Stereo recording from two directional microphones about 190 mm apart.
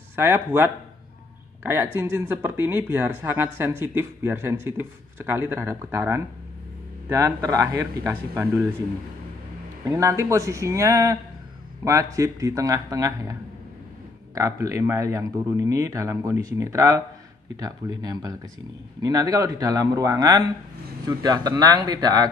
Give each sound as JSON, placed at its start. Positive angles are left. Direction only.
{"t": 0.1, "sound": "speech", "side_deg": -10}
{"t": 9.8, "sound": "a man's voice", "side_deg": -15}